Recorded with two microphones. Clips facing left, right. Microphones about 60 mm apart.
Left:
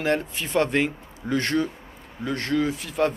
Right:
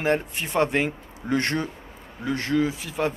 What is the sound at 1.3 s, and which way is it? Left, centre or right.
A man's voice, right.